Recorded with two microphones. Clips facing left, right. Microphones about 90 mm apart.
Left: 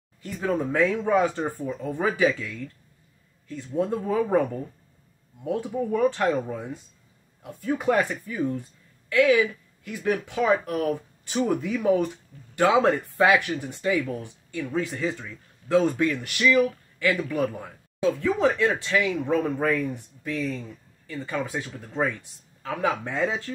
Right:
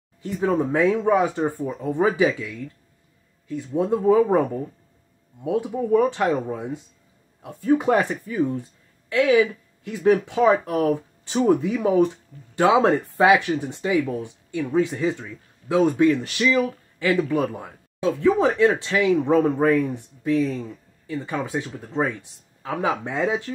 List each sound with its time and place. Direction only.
0.2 s speech: 20° right (ahead or behind)